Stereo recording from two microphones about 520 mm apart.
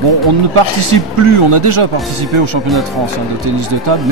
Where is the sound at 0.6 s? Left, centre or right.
Right.